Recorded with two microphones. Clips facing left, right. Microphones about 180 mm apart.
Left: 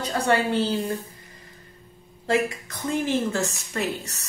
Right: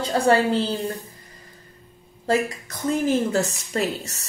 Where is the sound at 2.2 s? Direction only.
40° right (ahead or behind).